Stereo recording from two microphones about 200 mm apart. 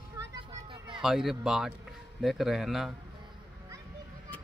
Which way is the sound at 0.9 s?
5° right (ahead or behind).